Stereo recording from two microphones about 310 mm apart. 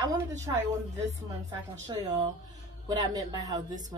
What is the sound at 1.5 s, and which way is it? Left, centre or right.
A woman's voice, centre.